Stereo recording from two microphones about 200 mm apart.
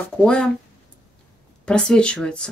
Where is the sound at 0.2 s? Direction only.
5° left (ahead or behind).